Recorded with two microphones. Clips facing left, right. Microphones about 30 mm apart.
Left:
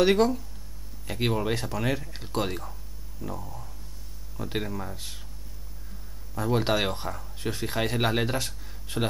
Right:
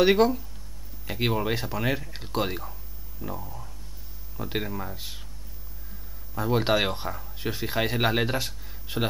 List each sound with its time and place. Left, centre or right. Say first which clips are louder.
0.0 s speech: right 1 dB; centre
6.3 s speech: right 2 dB; centre